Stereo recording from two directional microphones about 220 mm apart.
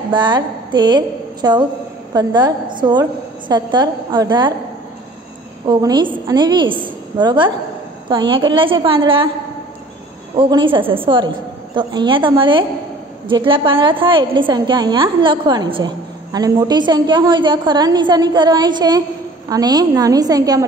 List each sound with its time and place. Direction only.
0.1 s a woman's voice: 20° right (ahead or behind)
5.7 s a woman's voice: 20° right (ahead or behind)
10.3 s a woman's voice: 20° right (ahead or behind)